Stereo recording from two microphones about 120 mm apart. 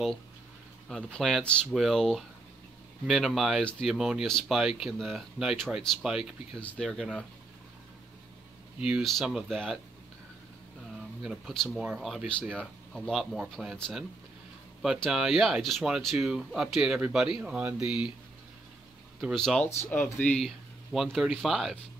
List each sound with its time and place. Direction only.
0.8 s speech: 5° left (ahead or behind)
9.0 s speech: centre (ahead or behind)
11.2 s speech: centre (ahead or behind)
13.7 s speech: 5° left (ahead or behind)
15.0 s speech: 5° right (ahead or behind)
19.3 s speech: 5° left (ahead or behind)